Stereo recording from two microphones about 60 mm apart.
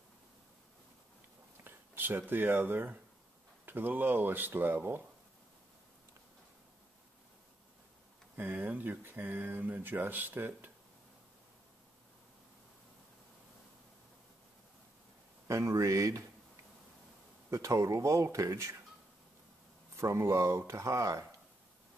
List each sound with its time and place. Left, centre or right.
1.6 s speech: right
8.4 s speech: right
15.4 s speech: right
17.5 s speech: right
20.0 s speech: right